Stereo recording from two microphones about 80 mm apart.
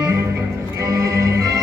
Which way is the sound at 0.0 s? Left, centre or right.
Right.